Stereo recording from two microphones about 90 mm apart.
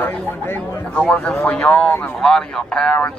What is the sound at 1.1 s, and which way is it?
Speech, 10° left (ahead or behind).